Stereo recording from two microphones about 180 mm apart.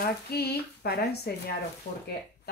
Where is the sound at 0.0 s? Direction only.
60° left (ahead or behind).